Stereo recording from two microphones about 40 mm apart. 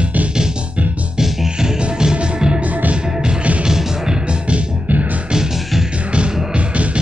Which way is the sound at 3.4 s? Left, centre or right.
Right.